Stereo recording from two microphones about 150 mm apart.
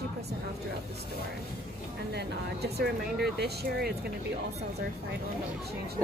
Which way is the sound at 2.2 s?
90° right.